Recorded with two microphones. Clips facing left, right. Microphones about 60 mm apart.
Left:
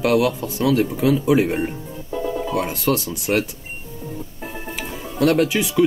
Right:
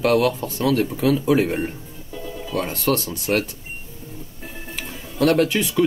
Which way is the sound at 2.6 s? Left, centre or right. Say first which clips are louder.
Right 2 dB; centre.